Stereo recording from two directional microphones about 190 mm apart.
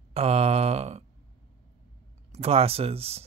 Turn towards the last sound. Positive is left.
turn(degrees=-30)  # may be behind; listen again after turning